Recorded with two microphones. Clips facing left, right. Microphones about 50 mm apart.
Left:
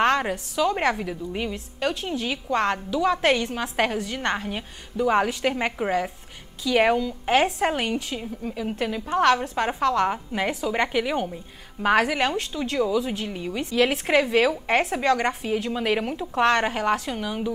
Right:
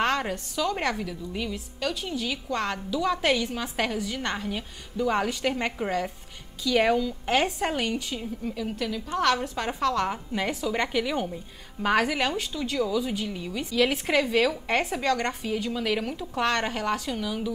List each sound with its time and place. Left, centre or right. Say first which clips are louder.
0.0 s a woman's voice: left 4 dB; centre
3.0 s a woman's voice: left 3 dB; centre
8.7 s a woman's voice: left 7 dB; left